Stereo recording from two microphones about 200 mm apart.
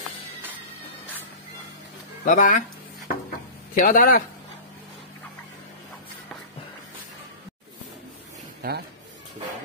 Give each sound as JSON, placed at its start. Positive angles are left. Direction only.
{"t": 2.2, "sound": "speech", "side_deg": 40}
{"t": 3.7, "sound": "a man's voice", "side_deg": 45}
{"t": 8.6, "sound": "speech", "side_deg": -50}